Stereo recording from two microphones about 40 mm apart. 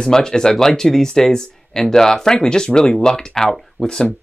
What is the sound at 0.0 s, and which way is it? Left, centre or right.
Speech, centre.